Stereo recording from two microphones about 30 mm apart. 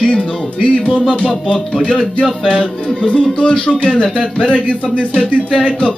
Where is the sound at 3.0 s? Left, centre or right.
Left.